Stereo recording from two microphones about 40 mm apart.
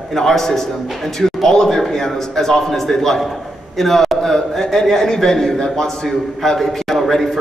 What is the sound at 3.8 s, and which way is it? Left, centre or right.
A man's voice, centre.